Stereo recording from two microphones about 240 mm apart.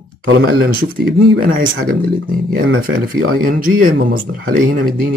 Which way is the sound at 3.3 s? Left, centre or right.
Right.